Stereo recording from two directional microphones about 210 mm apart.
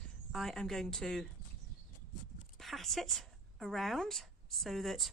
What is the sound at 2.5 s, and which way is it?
A woman's voice, centre (ahead or behind).